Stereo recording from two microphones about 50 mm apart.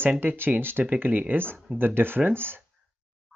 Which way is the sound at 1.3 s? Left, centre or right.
Right.